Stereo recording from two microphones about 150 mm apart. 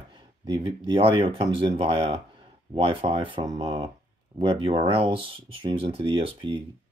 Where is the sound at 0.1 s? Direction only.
35° right (ahead or behind).